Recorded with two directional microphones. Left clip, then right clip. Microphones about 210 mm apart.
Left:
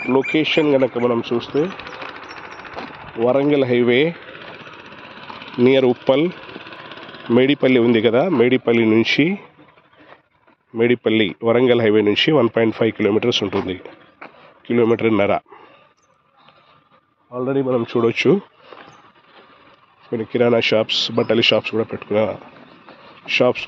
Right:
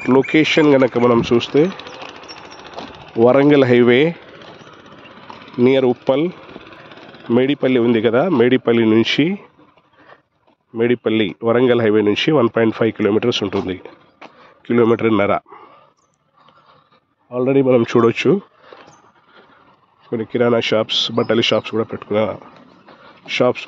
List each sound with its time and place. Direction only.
0.3 s speech: 30° right (ahead or behind); by 2.7 s 55° right (ahead or behind)
2.9 s a sound: 55° right (ahead or behind)
3.3 s speech: 30° right (ahead or behind); by 9.5 s 10° right (ahead or behind)
10.8 s speech: 5° right (ahead or behind)
14.6 s speech: 15° right (ahead or behind)
17.3 s speech: 35° right (ahead or behind)
18.0 s speech: 10° right (ahead or behind)
20.1 s speech: 10° right (ahead or behind)